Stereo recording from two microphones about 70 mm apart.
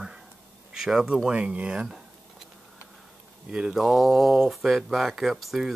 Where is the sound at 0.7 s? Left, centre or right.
Centre.